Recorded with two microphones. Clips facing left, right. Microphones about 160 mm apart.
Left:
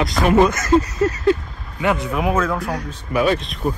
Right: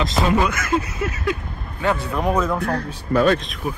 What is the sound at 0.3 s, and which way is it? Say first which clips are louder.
Speech: left 5 dB; 25° left (ahead or behind).